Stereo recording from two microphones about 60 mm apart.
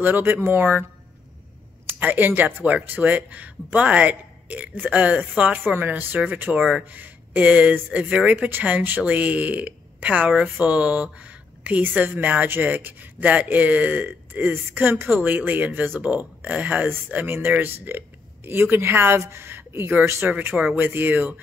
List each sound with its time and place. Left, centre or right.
0.0 s a woman's voice: right
2.0 s a woman's voice: right
20.7 s speech: right